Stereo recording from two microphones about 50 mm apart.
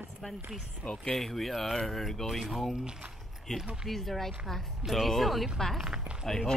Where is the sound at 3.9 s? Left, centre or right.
Centre.